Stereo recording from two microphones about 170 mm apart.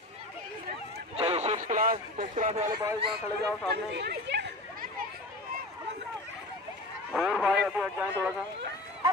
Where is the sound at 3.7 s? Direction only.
75° right (ahead or behind).